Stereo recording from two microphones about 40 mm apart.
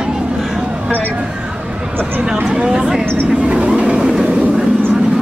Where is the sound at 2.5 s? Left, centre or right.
Right.